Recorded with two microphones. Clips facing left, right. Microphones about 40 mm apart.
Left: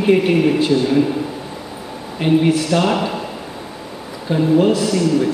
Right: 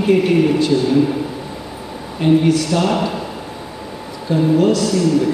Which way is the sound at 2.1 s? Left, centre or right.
Left.